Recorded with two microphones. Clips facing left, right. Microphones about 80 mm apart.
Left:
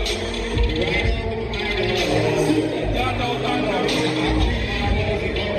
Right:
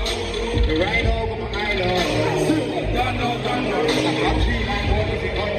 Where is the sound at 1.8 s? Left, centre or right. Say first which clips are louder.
Left 1 dB; right.